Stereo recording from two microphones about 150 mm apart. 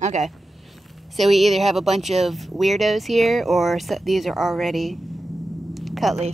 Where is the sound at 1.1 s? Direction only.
Centre (ahead or behind).